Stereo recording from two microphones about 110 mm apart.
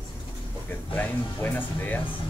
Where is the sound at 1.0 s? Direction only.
15° left (ahead or behind).